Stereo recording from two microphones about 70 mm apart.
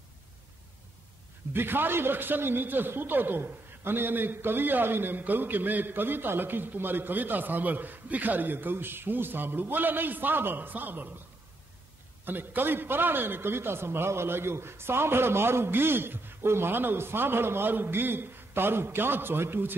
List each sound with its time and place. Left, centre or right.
1.5 s a man's voice: right
12.3 s a man's voice: right